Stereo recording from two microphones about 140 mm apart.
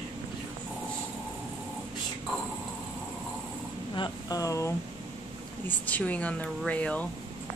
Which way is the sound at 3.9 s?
30° left (ahead or behind).